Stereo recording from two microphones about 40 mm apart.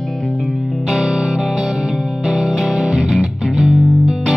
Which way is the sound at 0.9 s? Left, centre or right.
Centre.